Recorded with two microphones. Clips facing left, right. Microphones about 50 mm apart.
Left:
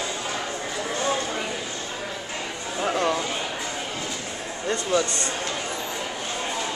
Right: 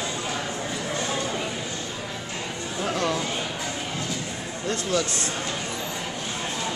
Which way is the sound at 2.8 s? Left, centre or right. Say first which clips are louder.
Left 2 dB; centre.